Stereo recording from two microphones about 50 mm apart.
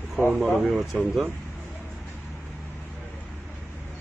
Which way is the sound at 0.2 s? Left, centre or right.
Left.